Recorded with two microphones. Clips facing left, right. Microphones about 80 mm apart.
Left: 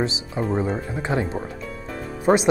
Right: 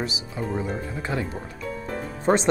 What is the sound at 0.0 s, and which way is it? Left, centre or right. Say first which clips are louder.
Speech: left 5 dB; left.